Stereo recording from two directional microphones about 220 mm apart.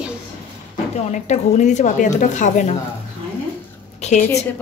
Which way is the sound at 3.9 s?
30° left (ahead or behind).